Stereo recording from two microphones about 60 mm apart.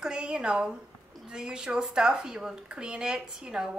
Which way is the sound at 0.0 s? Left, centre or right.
Centre.